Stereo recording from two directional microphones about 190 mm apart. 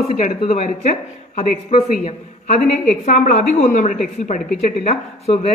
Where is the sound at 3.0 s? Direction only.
40° left (ahead or behind).